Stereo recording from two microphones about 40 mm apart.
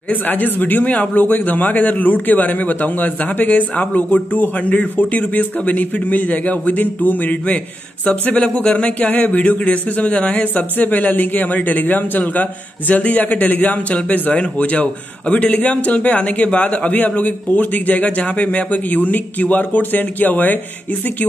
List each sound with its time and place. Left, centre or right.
0.1 s speech: left
10.3 s a man's voice: left
16.9 s speech: left